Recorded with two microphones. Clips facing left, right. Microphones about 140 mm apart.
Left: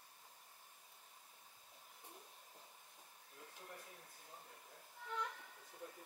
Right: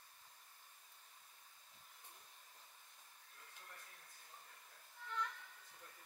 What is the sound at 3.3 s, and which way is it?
Music, 20° left (ahead or behind).